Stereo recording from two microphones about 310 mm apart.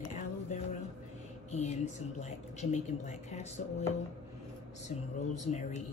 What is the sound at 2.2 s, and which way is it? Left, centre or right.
Speech, left.